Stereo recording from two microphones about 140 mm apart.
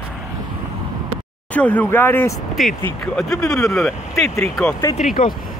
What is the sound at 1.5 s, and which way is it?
Speech, 10° left (ahead or behind).